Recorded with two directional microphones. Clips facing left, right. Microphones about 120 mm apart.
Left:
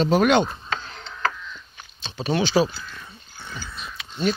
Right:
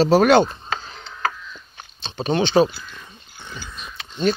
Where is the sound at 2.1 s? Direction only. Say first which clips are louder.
Right 3 dB; 25° right (ahead or behind).